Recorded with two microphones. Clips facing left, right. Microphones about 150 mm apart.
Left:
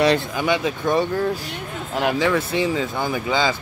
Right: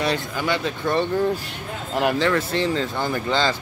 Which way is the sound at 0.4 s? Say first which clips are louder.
Left 3 dB; 15° left (ahead or behind).